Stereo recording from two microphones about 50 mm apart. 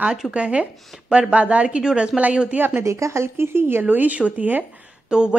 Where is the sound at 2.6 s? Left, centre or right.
Right.